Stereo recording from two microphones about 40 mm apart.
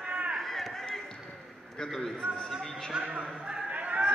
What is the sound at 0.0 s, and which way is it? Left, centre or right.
Run, right.